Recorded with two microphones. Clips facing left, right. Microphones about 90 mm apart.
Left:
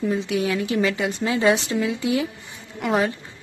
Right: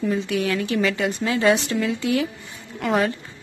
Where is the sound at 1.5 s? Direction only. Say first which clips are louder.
Right 1 dB; 20° left (ahead or behind).